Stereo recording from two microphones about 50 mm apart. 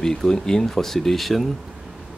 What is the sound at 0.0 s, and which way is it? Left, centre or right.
Speech, centre.